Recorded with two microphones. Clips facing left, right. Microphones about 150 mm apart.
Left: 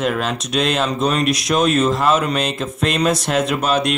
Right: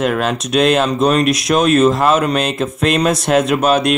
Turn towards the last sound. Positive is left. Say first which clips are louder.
# right 4 dB
turn(degrees=-50)  # may be behind; listen again after turning